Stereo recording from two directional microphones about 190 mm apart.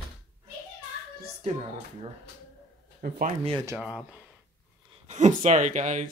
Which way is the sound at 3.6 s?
10° right (ahead or behind).